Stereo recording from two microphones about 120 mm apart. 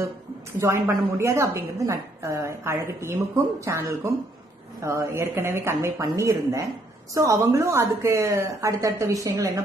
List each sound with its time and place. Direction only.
0.6 s a woman's voice: 20° right (ahead or behind)